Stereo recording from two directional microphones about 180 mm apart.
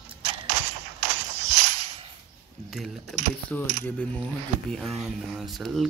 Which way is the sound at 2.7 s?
Centre (ahead or behind).